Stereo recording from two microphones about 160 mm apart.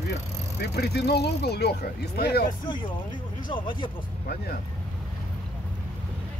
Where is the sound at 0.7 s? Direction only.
90° left.